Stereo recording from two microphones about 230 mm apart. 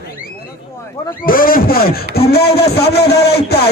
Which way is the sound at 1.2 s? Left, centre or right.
Left.